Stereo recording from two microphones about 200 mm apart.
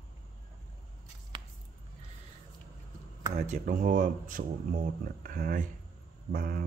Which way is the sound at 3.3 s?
35° right (ahead or behind).